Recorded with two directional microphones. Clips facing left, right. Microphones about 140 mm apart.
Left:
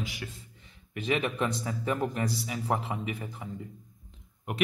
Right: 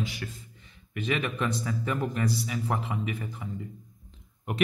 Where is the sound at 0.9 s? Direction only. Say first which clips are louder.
Left 1 dB; 30° left (ahead or behind).